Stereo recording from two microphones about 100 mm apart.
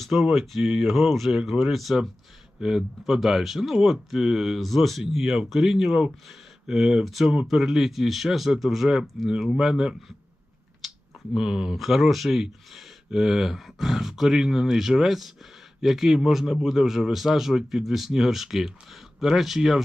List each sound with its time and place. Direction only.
0.0 s speech: centre (ahead or behind)
10.8 s a sound: centre (ahead or behind)
11.3 s speech: 5° right (ahead or behind)